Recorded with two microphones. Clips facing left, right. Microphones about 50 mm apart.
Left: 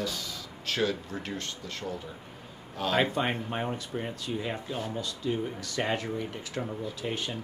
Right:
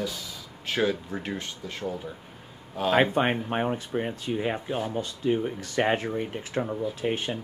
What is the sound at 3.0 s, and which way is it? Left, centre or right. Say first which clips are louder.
Speech: right 5 dB; right.